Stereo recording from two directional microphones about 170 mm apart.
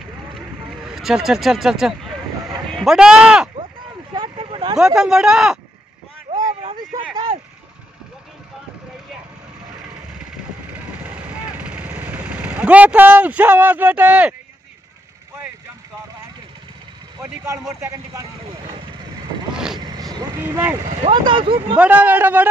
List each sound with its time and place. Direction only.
0.8 s speech: 5° right (ahead or behind)
4.1 s a sound: 25° right (ahead or behind)
4.7 s speech: 5° right (ahead or behind)
6.3 s vehicle: 35° right (ahead or behind)
11.1 s vehicle: 10° right (ahead or behind)
17.2 s speech: 15° right (ahead or behind)
19.5 s vehicle: 5° right (ahead or behind)
20.4 s speech: 15° right (ahead or behind)
21.0 s speech: 30° right (ahead or behind)
21.7 s speech: 10° right (ahead or behind)